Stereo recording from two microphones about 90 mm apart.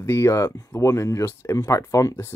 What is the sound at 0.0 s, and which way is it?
Speech, 30° left (ahead or behind).